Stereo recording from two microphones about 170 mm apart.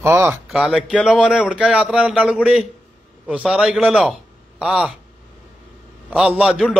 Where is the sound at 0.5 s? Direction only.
Centre (ahead or behind).